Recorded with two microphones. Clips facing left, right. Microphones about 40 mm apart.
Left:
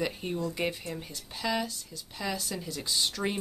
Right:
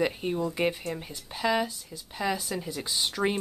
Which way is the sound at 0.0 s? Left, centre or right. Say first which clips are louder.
Right 4 dB; centre.